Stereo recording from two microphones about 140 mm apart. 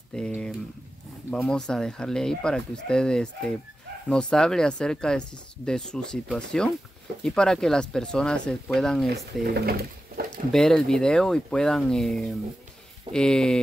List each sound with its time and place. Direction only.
0.1 s speech: 5° left (ahead or behind)
1.3 s speech: 5° left (ahead or behind)
9.7 s pigeon: 90° right
10.5 s speech: 5° left (ahead or behind)